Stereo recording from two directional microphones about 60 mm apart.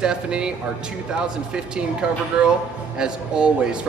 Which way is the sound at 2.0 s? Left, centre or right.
Centre.